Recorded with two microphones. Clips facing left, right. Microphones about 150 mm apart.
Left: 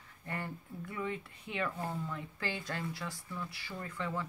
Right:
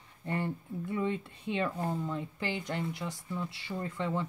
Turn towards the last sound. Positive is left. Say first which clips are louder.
# right 5 dB
turn(degrees=-25)  # may be behind; listen again after turning